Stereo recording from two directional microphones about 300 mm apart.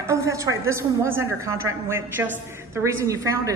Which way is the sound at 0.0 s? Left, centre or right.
Centre.